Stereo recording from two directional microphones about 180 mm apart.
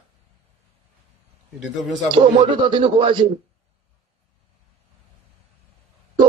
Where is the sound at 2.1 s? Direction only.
25° right (ahead or behind).